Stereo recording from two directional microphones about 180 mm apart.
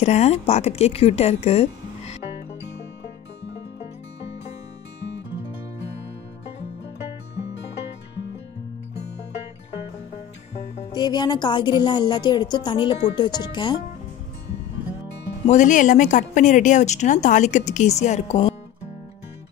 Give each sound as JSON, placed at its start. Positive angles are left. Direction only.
{"t": 0.0, "sound": "speech", "side_deg": 40}
{"t": 10.9, "sound": "a woman's voice", "side_deg": 20}
{"t": 15.4, "sound": "speech", "side_deg": 45}